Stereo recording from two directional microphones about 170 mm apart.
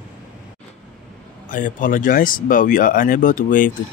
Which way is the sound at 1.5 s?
50° left (ahead or behind).